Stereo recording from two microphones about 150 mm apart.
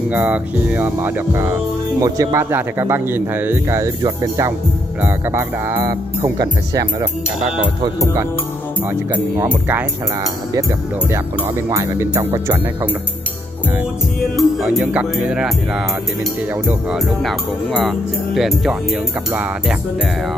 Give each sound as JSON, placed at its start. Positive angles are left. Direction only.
{"t": 0.1, "sound": "speech", "side_deg": -10}
{"t": 11.1, "sound": "speech", "side_deg": -20}
{"t": 14.3, "sound": "speech", "side_deg": 0}